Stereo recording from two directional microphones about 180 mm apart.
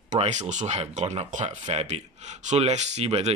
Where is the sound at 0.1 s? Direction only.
40° right (ahead or behind).